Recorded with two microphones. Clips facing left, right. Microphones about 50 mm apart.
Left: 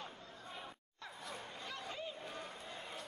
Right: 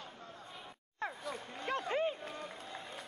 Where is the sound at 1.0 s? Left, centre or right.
Right.